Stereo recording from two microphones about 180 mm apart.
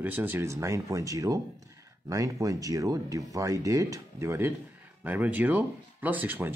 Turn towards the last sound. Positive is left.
turn(degrees=-10)  # may be behind; listen again after turning